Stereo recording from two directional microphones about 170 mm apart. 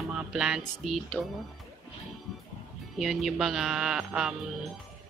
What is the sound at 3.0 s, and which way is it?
Speech, centre (ahead or behind).